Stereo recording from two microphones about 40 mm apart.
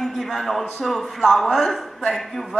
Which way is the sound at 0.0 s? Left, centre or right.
Centre.